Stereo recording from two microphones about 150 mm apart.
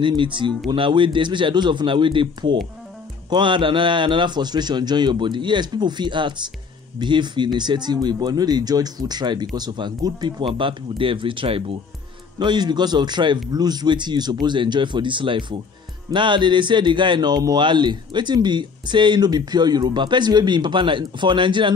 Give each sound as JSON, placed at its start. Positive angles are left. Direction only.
{"t": 0.0, "sound": "a man's voice", "side_deg": -35}